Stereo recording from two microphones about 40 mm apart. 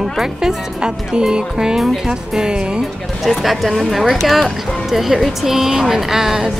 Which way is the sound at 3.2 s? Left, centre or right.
Centre.